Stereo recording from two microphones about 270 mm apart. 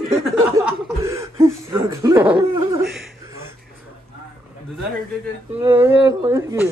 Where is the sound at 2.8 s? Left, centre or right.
Centre.